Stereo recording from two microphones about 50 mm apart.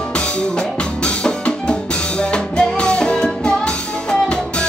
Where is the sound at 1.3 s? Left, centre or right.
Left.